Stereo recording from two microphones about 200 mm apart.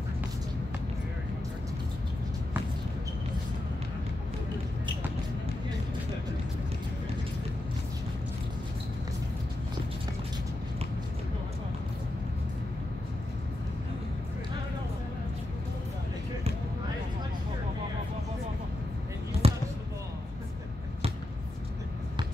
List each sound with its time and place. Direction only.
19.4 s basketball bounce: 30° right (ahead or behind)